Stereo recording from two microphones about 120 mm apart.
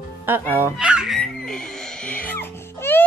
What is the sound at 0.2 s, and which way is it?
Fowl, 20° right (ahead or behind).